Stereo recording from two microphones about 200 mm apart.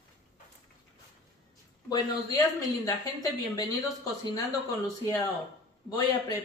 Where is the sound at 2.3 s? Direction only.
20° left (ahead or behind).